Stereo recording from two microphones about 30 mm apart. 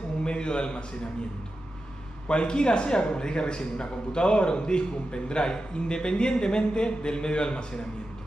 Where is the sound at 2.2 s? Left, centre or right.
Left.